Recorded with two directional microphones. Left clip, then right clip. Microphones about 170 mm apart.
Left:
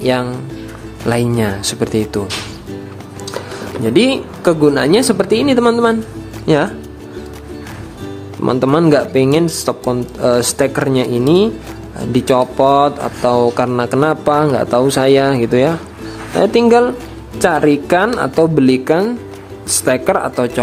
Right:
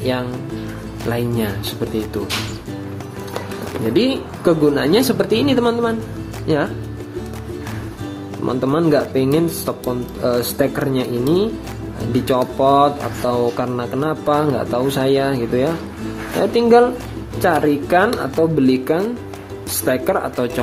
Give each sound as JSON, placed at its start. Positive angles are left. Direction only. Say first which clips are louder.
{"t": 0.0, "sound": "speech", "louder": "left 6 dB", "side_deg": 25}
{"t": 3.9, "sound": "speech", "louder": "left 5 dB", "side_deg": 25}
{"t": 8.5, "sound": "speech", "louder": "left 5 dB", "side_deg": 25}